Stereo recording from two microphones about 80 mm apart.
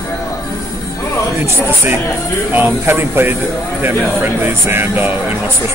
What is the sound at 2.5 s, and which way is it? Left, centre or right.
Speech, right.